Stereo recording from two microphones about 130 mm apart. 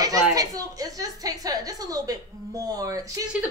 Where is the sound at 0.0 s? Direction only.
30° right (ahead or behind).